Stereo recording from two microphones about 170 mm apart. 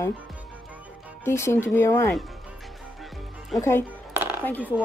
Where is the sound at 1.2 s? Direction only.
15° left (ahead or behind).